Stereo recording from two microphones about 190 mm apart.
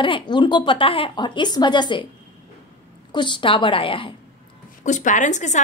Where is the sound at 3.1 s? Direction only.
25° left (ahead or behind).